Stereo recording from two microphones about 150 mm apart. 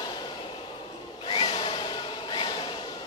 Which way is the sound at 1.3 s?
30° left (ahead or behind).